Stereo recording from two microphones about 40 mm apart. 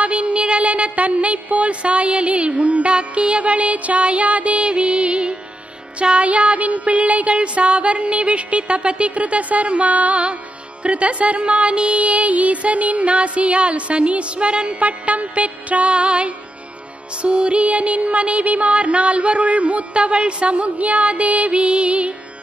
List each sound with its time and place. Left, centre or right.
0.0 s music: right